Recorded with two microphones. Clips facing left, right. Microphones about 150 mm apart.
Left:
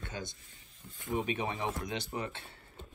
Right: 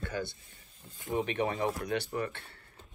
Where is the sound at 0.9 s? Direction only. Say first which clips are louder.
Right 2 dB; 20° right (ahead or behind).